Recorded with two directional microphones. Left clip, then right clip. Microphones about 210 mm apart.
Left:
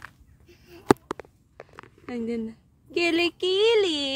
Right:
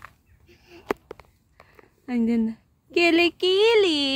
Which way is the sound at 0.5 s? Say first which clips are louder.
Even; 50° left (ahead or behind).